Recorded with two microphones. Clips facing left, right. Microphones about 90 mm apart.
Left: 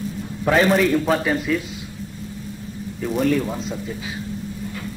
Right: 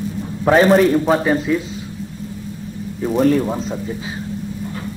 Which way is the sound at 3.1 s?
35° right (ahead or behind).